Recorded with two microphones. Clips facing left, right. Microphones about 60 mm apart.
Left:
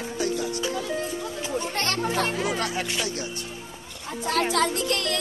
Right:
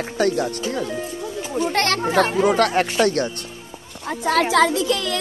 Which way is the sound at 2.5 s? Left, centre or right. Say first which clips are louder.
Right 9 dB; right.